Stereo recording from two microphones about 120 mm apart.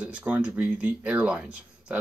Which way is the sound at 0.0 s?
10° right (ahead or behind).